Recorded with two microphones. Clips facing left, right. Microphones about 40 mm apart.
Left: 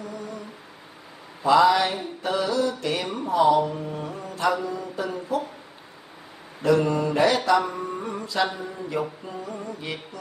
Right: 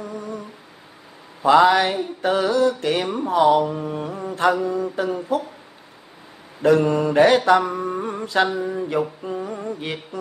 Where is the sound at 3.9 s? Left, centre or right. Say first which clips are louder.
Right 5 dB; right.